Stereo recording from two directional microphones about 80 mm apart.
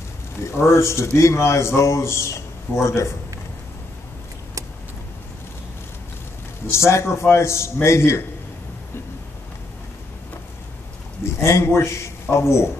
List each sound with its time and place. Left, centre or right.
0.5 s a man's voice: left
6.7 s a man's voice: left
11.4 s a man's voice: left